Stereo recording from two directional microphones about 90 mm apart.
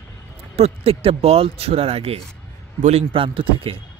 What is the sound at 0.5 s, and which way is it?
Speech, 90° right.